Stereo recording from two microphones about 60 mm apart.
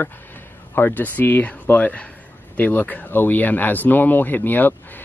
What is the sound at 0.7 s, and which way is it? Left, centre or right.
Speech, left.